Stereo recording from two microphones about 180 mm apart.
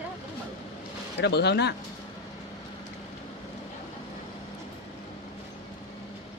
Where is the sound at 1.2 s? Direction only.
65° left (ahead or behind).